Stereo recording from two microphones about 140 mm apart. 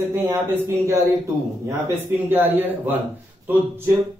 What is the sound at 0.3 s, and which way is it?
Speech, 20° right (ahead or behind).